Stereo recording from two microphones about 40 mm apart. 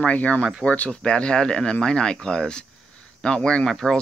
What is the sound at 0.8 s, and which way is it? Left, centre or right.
Speech, left.